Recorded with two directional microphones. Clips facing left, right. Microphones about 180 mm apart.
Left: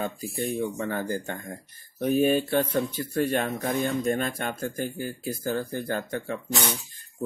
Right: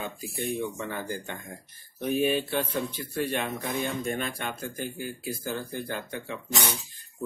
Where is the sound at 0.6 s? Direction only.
45° left (ahead or behind).